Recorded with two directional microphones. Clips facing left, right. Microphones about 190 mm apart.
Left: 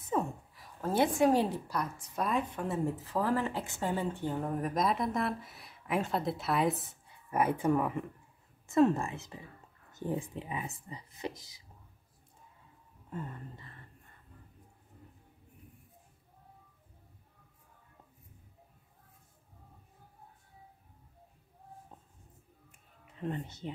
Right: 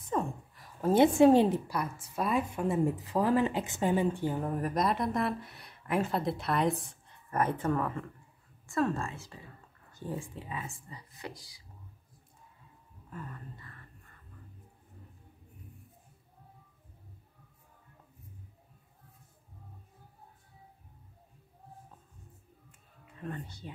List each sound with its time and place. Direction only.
0.0 s a sound: 5° left (ahead or behind)
0.7 s a woman's voice: 15° right (ahead or behind)
1.7 s a woman's voice: 5° right (ahead or behind); by 11.6 s 20° left (ahead or behind)
13.1 s speech: 25° left (ahead or behind)
22.7 s music: 20° left (ahead or behind)